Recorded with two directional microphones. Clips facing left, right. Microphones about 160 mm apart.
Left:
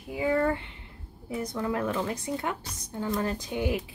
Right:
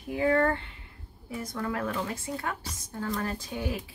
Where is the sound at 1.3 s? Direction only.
20° left (ahead or behind).